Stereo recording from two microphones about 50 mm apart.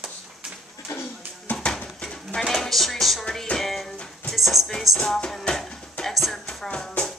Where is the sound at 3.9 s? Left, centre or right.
Centre.